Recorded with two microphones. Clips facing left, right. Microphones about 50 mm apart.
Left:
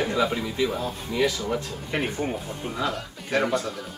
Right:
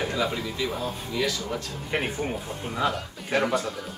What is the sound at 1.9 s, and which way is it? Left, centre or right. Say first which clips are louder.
Speech: left 1 dB; centre.